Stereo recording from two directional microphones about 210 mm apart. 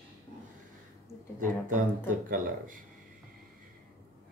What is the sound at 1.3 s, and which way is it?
Speech, 40° right (ahead or behind).